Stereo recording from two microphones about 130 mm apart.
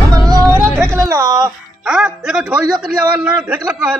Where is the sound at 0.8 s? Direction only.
25° right (ahead or behind).